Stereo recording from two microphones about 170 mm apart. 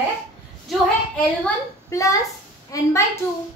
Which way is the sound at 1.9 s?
20° left (ahead or behind).